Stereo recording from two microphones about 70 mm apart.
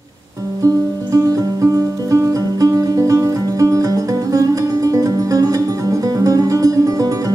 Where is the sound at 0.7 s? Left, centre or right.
Right.